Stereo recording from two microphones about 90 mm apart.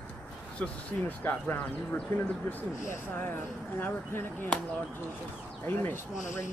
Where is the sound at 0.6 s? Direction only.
20° left (ahead or behind).